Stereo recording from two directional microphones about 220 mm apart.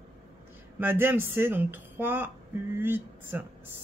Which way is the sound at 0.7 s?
10° right (ahead or behind).